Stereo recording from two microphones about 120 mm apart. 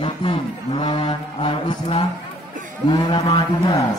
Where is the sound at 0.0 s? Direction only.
45° left (ahead or behind).